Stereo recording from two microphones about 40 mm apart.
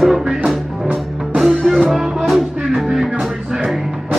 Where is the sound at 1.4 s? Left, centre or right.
Centre.